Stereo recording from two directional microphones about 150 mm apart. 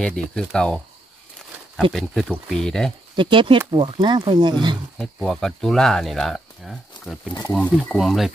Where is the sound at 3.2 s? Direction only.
35° right (ahead or behind).